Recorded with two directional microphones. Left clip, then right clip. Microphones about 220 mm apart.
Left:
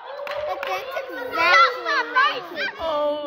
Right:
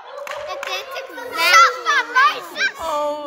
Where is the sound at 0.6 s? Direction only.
30° left (ahead or behind).